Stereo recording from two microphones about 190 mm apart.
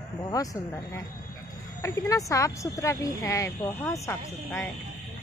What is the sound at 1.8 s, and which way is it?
Speech, 15° left (ahead or behind).